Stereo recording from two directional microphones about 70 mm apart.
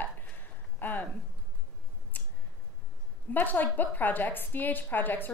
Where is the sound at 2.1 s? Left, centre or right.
Left.